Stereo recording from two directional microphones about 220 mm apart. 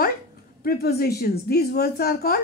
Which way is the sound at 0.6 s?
45° left (ahead or behind).